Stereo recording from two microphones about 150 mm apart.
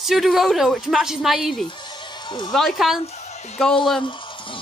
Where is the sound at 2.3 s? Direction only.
30° left (ahead or behind).